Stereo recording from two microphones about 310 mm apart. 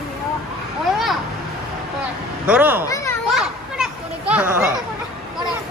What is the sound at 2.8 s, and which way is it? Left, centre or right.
Children playing, centre.